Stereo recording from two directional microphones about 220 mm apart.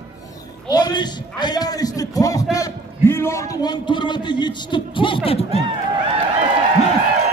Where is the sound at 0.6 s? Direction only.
20° left (ahead or behind).